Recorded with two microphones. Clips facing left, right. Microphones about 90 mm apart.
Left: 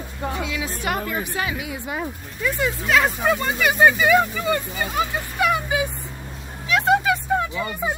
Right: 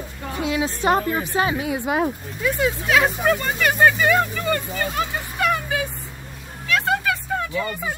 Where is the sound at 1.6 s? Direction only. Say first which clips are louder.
Right 7 dB; 60° right (ahead or behind).